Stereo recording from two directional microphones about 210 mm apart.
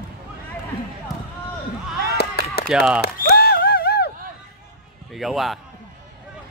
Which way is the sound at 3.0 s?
50° left (ahead or behind).